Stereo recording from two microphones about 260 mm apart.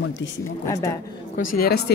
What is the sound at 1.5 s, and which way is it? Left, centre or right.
Speech, left.